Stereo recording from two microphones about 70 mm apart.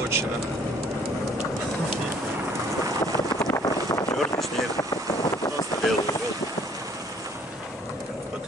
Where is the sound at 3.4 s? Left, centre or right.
Left.